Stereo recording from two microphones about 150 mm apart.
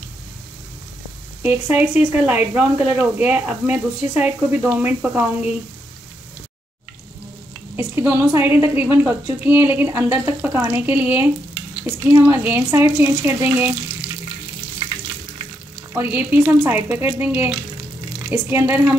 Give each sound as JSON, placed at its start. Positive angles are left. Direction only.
{"t": 1.4, "sound": "speech", "side_deg": -10}
{"t": 7.7, "sound": "speech", "side_deg": -15}
{"t": 15.9, "sound": "speech", "side_deg": -15}